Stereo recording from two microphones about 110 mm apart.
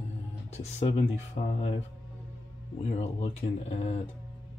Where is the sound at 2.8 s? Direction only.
80° left.